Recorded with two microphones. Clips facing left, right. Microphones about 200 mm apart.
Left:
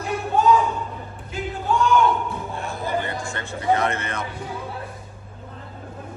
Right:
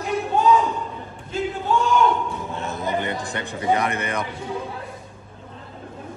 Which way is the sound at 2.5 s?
20° right (ahead or behind).